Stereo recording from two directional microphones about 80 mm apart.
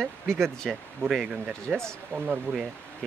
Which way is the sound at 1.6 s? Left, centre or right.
Centre.